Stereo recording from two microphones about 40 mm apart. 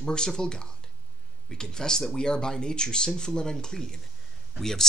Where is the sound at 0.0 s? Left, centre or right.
Centre.